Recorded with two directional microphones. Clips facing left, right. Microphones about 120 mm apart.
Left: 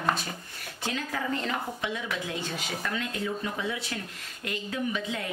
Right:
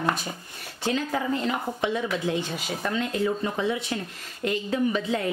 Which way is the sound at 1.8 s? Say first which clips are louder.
Right 7 dB; 35° right (ahead or behind).